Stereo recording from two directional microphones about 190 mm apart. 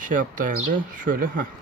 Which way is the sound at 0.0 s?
45° right (ahead or behind).